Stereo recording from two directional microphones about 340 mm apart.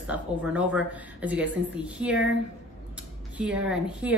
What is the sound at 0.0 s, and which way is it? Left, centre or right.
A woman's voice, centre.